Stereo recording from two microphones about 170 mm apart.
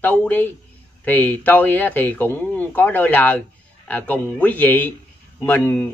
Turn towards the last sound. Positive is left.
turn(degrees=10)  # may be behind; listen again after turning